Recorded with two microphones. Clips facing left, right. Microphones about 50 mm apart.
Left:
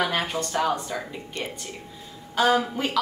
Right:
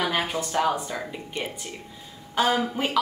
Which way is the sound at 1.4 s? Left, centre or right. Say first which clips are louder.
Right 1 dB; centre.